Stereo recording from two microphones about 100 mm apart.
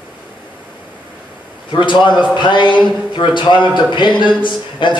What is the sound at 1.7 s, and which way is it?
Speech, 50° left (ahead or behind).